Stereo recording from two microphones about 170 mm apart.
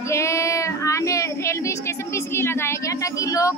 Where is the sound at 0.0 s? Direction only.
15° left (ahead or behind).